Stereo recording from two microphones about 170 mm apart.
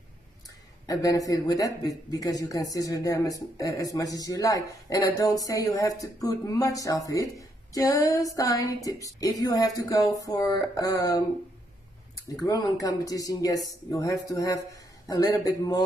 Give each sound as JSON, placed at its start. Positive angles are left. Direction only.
{"t": 0.8, "sound": "speech", "side_deg": 20}
{"t": 12.3, "sound": "speech", "side_deg": 20}